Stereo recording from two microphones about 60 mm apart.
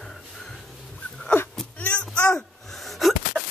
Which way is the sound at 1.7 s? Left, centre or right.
Left.